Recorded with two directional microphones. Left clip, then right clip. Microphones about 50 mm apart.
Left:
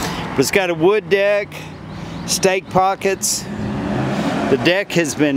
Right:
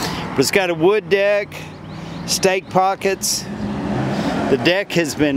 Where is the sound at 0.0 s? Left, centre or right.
Centre.